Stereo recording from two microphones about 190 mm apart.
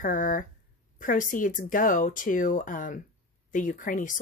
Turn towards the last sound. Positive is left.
turn(degrees=45)  # may be behind; listen again after turning